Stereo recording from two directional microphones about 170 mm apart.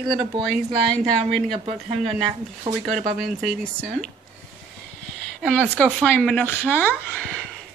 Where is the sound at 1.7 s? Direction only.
35° right (ahead or behind).